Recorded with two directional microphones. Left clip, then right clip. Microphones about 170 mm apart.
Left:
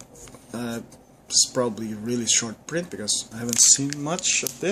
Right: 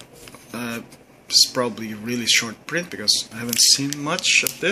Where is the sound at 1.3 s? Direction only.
15° left (ahead or behind).